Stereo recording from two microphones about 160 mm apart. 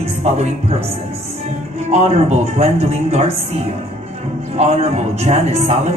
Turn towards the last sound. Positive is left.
turn(degrees=-40)  # may be behind; listen again after turning